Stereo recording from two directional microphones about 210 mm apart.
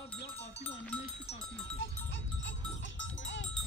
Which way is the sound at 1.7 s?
60° left (ahead or behind).